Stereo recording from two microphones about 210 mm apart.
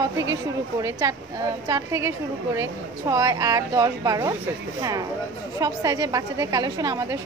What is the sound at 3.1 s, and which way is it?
A woman's voice, 15° right (ahead or behind).